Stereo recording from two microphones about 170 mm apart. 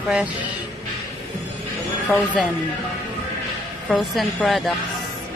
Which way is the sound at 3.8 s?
Centre (ahead or behind).